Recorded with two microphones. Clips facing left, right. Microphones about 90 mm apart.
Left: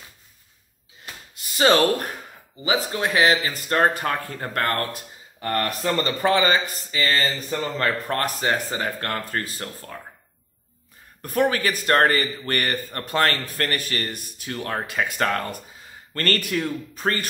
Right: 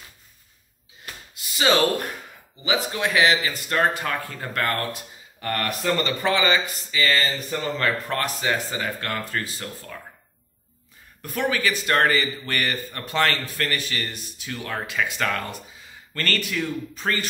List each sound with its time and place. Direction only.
1.3 s speech: 45° left (ahead or behind)
5.4 s speech: 30° left (ahead or behind)
11.2 s a man's voice: 45° left (ahead or behind)